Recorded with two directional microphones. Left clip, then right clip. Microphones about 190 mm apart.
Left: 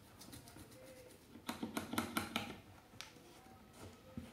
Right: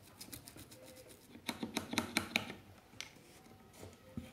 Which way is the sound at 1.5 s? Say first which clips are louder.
Right 3 dB; 35° right (ahead or behind).